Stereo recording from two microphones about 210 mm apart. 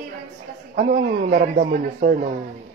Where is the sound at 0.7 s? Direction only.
35° right (ahead or behind).